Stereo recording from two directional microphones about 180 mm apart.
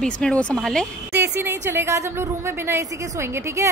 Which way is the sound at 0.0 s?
5° left (ahead or behind).